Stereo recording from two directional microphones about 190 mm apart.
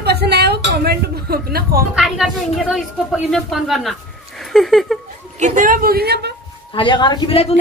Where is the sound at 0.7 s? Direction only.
55° right (ahead or behind).